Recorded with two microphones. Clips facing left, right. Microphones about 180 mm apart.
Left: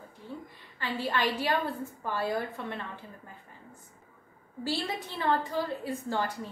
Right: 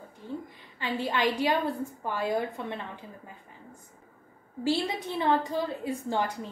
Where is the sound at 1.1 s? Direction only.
15° right (ahead or behind).